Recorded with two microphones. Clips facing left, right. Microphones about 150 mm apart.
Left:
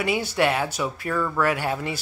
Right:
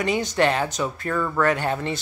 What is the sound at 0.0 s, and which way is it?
Speech, 10° left (ahead or behind).